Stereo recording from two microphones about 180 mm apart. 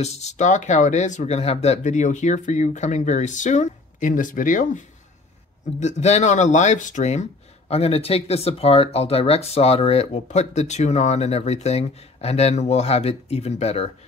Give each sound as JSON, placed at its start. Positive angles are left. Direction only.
{"t": 0.0, "sound": "speech", "side_deg": 40}